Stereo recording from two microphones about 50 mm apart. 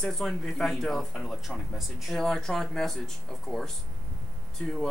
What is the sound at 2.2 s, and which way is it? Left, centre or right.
Speech, centre.